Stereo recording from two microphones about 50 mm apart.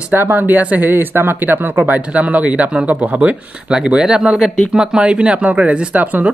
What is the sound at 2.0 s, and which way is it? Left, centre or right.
Speech, right.